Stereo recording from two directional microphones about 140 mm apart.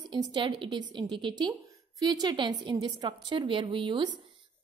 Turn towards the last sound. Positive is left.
turn(degrees=-35)  # may be behind; listen again after turning